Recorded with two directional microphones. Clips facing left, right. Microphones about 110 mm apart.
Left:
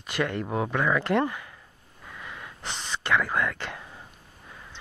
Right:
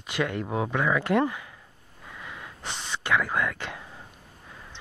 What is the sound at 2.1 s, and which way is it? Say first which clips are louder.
Wheeze: even; 5° right (ahead or behind).